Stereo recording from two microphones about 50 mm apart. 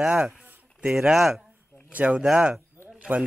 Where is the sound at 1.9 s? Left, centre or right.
Right.